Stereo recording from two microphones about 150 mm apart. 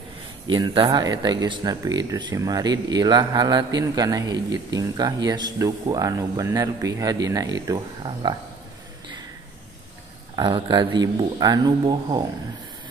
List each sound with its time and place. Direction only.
0.5 s speech: 30° right (ahead or behind)
10.3 s speech: 30° right (ahead or behind)